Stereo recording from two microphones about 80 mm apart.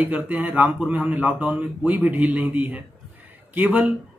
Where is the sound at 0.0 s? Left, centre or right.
Right.